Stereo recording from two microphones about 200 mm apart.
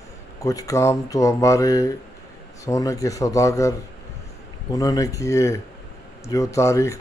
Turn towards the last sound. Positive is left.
turn(degrees=15)  # may be behind; listen again after turning